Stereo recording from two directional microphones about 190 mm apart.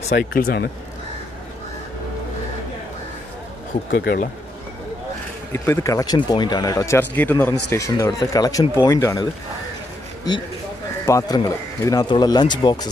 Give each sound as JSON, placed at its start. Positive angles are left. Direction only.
{"t": 0.3, "sound": "speech", "side_deg": 50}
{"t": 3.9, "sound": "speech", "side_deg": 55}
{"t": 5.5, "sound": "speech", "side_deg": 15}
{"t": 11.1, "sound": "speech", "side_deg": 20}